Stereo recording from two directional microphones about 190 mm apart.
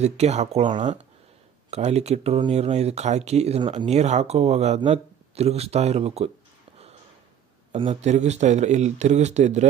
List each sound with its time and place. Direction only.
0.0 s speech: 35° right (ahead or behind)
7.7 s speech: 30° right (ahead or behind)